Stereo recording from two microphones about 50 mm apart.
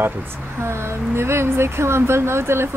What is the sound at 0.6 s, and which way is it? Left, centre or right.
Speech, right.